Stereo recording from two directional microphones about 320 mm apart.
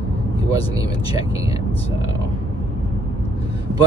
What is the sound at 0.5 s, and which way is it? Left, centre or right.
Speech, centre.